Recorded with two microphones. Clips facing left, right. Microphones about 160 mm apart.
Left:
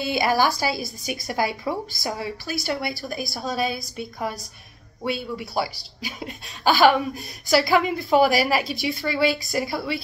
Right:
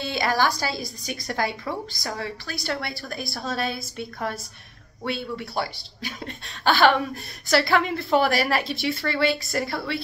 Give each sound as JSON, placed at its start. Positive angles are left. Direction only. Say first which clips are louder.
{"t": 0.0, "sound": "a woman's voice", "louder": "left 3 dB", "side_deg": 10}